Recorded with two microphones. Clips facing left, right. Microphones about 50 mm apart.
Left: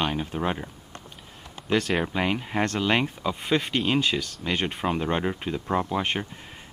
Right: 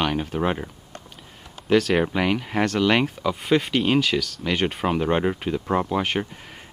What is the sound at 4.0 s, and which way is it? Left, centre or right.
Speech, right.